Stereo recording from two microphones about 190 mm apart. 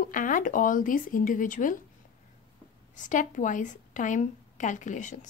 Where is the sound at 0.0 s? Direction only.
45° left (ahead or behind).